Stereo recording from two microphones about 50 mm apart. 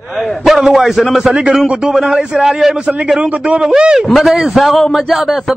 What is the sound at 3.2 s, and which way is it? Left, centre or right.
Speech, right.